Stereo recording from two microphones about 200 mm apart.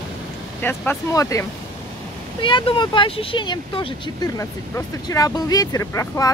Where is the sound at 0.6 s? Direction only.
10° left (ahead or behind).